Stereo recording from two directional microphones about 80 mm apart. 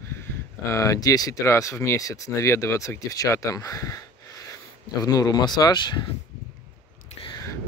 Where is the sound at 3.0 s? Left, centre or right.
Left.